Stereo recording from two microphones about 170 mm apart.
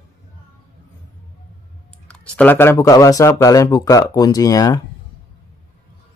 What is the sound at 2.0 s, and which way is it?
Speech, 5° left (ahead or behind).